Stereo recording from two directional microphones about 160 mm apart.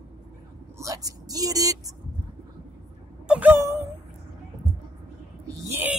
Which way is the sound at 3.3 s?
10° right (ahead or behind).